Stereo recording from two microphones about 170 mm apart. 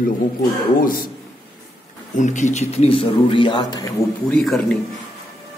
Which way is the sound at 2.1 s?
45° left (ahead or behind).